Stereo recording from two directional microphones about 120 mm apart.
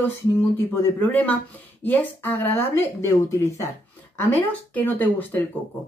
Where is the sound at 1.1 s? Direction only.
15° left (ahead or behind).